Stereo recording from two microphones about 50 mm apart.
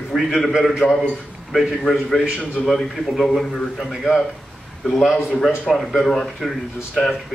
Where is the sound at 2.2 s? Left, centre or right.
Centre.